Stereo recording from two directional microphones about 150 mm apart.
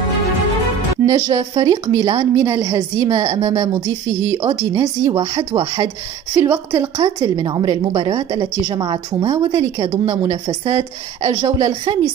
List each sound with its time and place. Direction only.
1.0 s a woman's voice: 25° right (ahead or behind)